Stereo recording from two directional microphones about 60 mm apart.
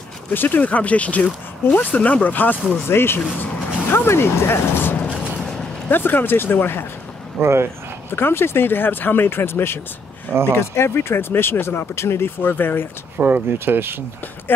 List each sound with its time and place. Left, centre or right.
0.3 s speech: left
2.9 s speech: left
7.3 s speech: right
8.1 s speech: left
12.4 s speech: left
13.2 s speech: right